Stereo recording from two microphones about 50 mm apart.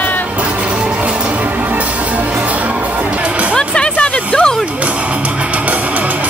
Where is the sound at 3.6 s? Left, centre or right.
Centre.